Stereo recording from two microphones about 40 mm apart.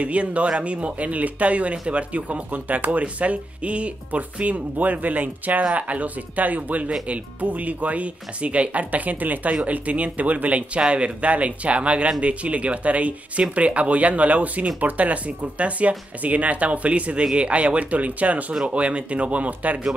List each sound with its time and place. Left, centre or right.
0.0 s speech: right